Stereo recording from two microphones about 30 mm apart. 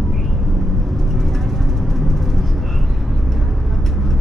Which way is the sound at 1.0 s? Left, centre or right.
Centre.